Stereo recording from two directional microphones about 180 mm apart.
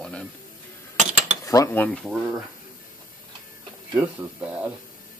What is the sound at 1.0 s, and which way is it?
Cutlery, 40° right (ahead or behind).